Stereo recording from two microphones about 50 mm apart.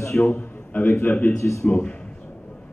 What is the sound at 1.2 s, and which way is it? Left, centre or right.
Speech, left.